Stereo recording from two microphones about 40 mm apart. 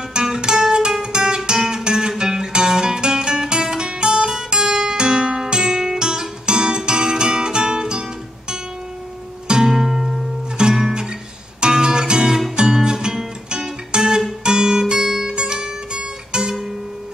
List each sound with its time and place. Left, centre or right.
0.2 s music: centre
9.7 s music: centre